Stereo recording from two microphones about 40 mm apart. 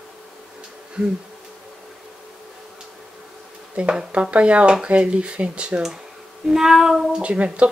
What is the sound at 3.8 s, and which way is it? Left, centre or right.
Speech, right.